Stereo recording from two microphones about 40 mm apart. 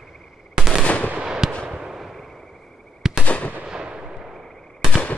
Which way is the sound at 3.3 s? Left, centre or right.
Left.